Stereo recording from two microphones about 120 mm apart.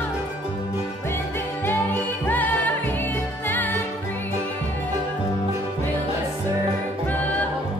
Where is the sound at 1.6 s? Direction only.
15° left (ahead or behind).